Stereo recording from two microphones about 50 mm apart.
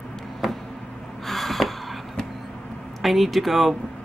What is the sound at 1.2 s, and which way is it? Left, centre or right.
Gasp, centre.